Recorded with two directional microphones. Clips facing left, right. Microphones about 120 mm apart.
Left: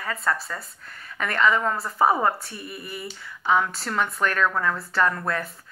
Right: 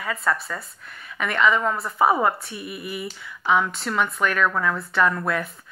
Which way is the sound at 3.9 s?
35° left (ahead or behind).